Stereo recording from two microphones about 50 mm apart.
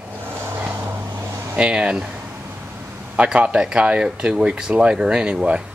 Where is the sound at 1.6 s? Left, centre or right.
Centre.